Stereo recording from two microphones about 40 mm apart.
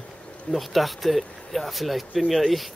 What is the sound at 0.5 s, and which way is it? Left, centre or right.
Speech, centre.